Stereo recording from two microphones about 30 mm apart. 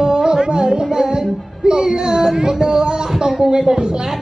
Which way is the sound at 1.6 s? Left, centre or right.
Right.